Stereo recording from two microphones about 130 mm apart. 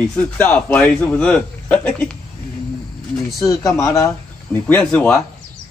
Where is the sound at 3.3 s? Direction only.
25° left (ahead or behind).